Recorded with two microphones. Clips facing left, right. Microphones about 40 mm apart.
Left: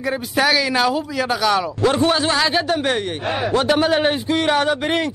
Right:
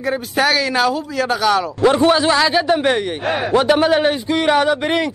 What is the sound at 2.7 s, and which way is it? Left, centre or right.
Speech, centre.